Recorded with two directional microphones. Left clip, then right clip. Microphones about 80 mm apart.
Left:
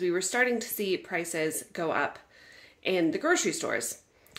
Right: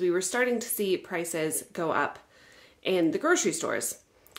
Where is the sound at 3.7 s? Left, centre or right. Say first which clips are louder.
Even; right.